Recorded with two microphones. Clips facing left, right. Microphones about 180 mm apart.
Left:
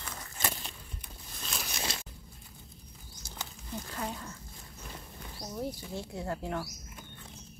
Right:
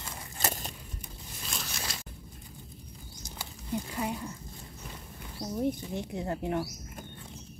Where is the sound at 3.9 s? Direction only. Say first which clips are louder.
Right 4 dB; 10° right (ahead or behind).